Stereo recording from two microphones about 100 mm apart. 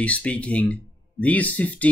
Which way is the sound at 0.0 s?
10° left (ahead or behind).